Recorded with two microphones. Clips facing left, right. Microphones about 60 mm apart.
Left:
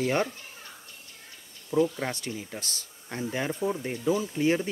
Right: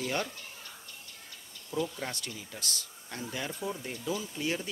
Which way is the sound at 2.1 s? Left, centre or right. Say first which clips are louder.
Left 6 dB; left.